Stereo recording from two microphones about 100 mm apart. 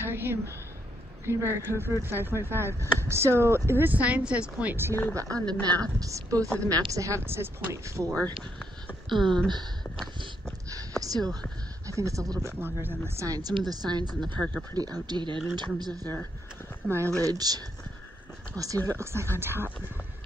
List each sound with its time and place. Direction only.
0.0 s a sound: 20° right (ahead or behind)
1.2 s speech: 25° right (ahead or behind)
5.1 s speech: 40° right (ahead or behind)
10.7 s a sound: 35° right (ahead or behind)
11.9 s speech: 30° right (ahead or behind)
13.3 s speech: 40° right (ahead or behind)
16.8 s speech: 25° right (ahead or behind)
17.2 s speech: 40° right (ahead or behind); by 19.7 s 25° right (ahead or behind)